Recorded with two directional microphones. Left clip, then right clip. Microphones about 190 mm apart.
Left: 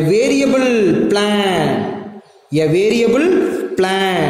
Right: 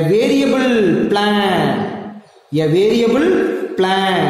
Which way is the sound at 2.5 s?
40° left (ahead or behind).